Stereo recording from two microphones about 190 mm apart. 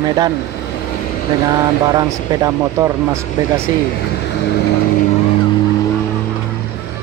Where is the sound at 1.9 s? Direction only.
15° right (ahead or behind).